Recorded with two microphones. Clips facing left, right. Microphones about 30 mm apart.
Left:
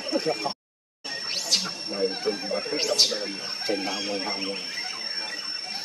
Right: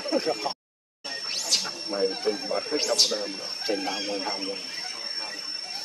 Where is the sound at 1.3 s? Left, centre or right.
Centre.